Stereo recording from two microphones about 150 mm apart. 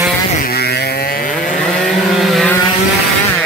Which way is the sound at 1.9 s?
Centre (ahead or behind).